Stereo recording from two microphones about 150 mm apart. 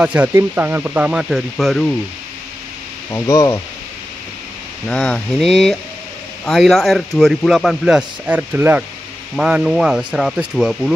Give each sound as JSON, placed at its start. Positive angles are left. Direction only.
{"t": 0.0, "sound": "speech", "side_deg": -10}
{"t": 3.1, "sound": "speech", "side_deg": 20}
{"t": 4.8, "sound": "speech", "side_deg": 5}